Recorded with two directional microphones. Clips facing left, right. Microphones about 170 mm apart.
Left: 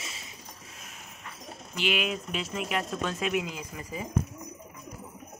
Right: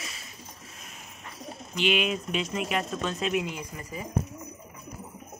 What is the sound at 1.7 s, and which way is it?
A man's voice, 5° left (ahead or behind).